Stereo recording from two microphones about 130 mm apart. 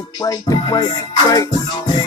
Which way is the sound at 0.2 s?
30° left (ahead or behind).